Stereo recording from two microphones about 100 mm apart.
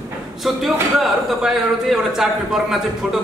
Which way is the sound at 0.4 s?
Centre (ahead or behind).